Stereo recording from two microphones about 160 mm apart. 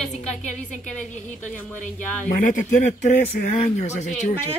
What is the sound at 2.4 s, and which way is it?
Speech, 55° left (ahead or behind).